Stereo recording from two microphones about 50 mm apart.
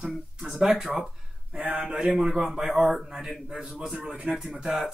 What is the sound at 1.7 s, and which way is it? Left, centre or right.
Speech, right.